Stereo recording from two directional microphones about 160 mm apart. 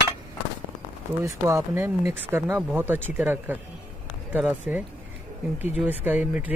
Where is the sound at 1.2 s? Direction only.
15° right (ahead or behind).